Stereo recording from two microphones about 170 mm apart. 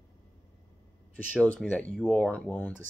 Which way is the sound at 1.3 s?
5° left (ahead or behind).